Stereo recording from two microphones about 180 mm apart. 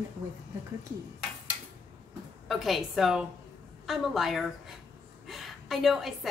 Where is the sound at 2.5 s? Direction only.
Centre (ahead or behind).